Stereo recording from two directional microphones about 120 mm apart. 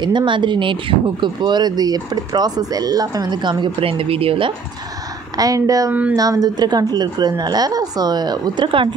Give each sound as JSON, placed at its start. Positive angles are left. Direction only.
{"t": 0.0, "sound": "speech", "side_deg": -40}
{"t": 5.4, "sound": "a woman's voice", "side_deg": -30}